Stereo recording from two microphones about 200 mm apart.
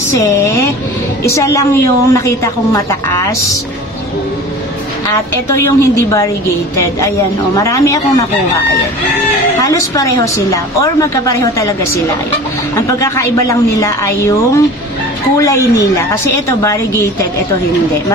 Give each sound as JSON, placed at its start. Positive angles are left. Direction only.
{"t": 0.1, "sound": "a woman's voice", "side_deg": 15}
{"t": 5.5, "sound": "a woman's voice", "side_deg": 15}
{"t": 9.6, "sound": "a woman's voice", "side_deg": 15}